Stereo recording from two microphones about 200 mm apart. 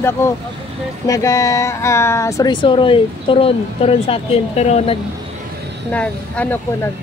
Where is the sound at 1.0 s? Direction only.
15° left (ahead or behind); by 4.9 s 35° left (ahead or behind).